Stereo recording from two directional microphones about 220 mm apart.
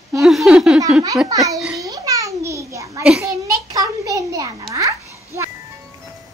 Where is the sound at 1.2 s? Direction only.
15° right (ahead or behind).